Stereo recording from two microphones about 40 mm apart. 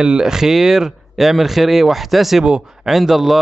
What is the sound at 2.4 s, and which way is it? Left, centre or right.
Speech, right.